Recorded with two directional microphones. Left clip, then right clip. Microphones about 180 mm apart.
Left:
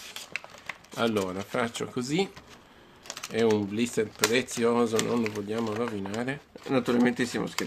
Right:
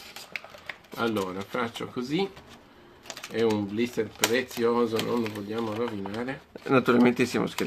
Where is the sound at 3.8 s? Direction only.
40° left (ahead or behind).